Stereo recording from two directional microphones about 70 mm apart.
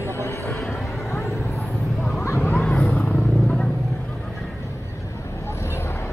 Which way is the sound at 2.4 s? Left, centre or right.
Centre.